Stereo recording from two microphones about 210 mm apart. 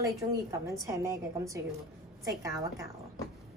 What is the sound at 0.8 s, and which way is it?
Speech, 15° right (ahead or behind).